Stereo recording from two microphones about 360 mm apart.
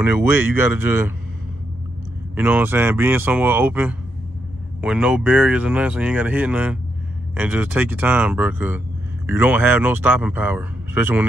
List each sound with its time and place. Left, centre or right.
0.0 s speech: centre
2.3 s speech: centre